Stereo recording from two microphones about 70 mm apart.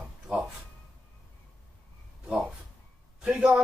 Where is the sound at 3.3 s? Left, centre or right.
Centre.